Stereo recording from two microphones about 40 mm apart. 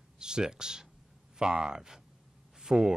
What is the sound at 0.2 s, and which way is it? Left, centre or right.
Speech, centre.